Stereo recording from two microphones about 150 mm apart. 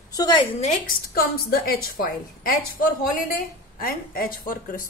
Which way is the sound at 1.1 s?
90° left.